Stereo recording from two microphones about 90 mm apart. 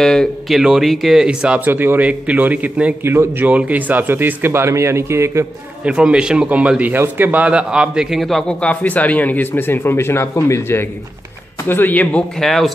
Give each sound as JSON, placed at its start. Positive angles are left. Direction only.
{"t": 0.0, "sound": "a man's voice", "side_deg": 5}
{"t": 1.6, "sound": "a man's voice", "side_deg": -20}
{"t": 5.9, "sound": "a man's voice", "side_deg": -10}
{"t": 11.7, "sound": "a man's voice", "side_deg": 20}
{"t": 12.4, "sound": "a man's voice", "side_deg": 0}